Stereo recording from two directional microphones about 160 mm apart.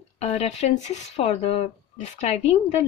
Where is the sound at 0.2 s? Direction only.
40° left (ahead or behind).